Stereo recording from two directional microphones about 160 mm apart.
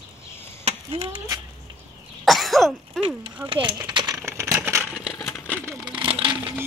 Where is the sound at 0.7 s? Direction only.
35° right (ahead or behind).